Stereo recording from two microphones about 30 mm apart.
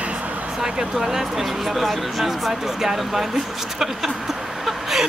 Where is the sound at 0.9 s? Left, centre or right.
Centre.